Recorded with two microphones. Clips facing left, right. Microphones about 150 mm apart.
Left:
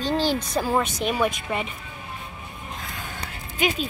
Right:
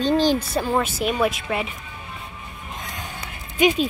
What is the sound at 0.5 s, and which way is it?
A woman's voice, centre (ahead or behind).